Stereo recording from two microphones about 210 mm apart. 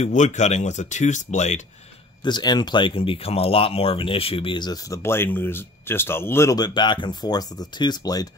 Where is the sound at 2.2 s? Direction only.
20° left (ahead or behind).